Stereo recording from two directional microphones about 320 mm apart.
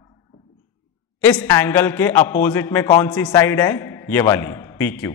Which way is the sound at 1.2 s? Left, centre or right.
Centre.